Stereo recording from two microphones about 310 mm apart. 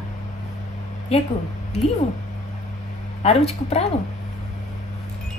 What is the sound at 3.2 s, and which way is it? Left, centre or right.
Speech, centre.